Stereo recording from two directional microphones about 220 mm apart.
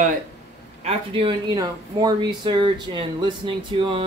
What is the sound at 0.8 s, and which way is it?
Speech, 25° right (ahead or behind).